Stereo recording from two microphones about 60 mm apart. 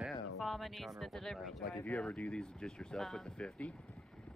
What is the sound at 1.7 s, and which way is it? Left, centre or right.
Speech, left.